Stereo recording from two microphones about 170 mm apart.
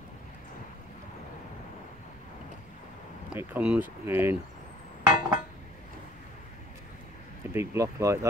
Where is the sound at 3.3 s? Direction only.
10° right (ahead or behind).